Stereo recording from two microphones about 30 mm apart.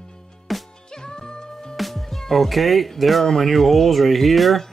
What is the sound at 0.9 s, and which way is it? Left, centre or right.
Music, left.